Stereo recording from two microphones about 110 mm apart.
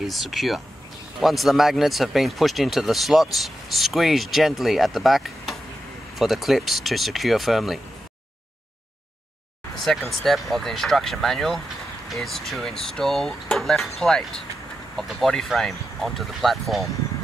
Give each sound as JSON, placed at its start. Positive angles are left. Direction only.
{"t": 0.0, "sound": "speech", "side_deg": 0}
{"t": 9.8, "sound": "speech", "side_deg": 0}